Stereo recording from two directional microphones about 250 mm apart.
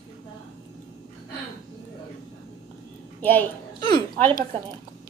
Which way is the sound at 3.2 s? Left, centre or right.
Centre.